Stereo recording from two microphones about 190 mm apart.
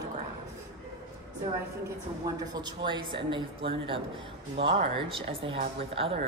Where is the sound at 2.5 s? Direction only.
25° right (ahead or behind).